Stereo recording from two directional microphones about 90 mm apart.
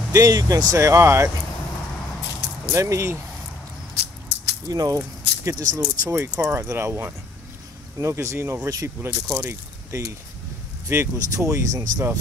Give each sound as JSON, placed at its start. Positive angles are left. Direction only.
{"t": 0.1, "sound": "speech", "side_deg": -40}
{"t": 2.7, "sound": "speech", "side_deg": -35}
{"t": 4.6, "sound": "speech", "side_deg": -40}